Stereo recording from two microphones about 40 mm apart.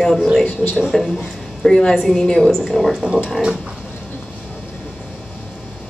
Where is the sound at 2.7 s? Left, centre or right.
Centre.